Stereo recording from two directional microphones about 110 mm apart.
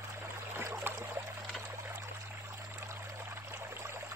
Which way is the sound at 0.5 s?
20° right (ahead or behind).